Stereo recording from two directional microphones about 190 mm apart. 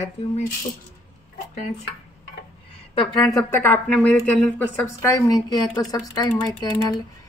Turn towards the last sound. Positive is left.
turn(degrees=20)  # may be behind; listen again after turning